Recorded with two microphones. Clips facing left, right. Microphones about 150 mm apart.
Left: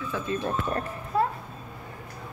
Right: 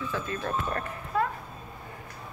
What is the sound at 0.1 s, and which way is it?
A woman's voice, 20° left (ahead or behind).